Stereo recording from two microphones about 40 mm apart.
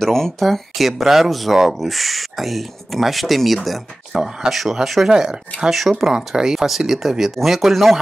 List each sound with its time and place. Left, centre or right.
0.0 s speech: centre
5.0 s speech: centre
5.7 s speech: centre